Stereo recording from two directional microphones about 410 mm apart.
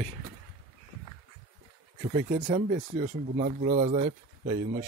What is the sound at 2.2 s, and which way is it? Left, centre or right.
Speech, centre.